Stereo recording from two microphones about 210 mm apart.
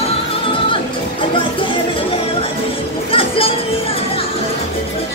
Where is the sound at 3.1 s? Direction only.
25° left (ahead or behind).